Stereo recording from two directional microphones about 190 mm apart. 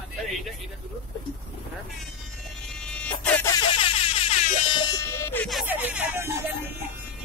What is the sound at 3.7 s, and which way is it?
Air horn, 30° left (ahead or behind).